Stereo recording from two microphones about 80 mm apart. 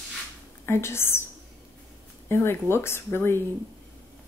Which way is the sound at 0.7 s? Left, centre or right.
Left.